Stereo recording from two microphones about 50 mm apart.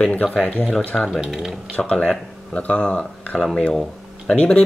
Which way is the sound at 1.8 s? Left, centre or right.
Left.